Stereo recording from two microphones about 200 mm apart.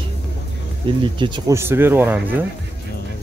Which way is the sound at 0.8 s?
25° right (ahead or behind).